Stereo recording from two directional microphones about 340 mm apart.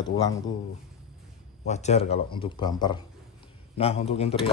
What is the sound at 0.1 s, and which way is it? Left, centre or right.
Speech, centre.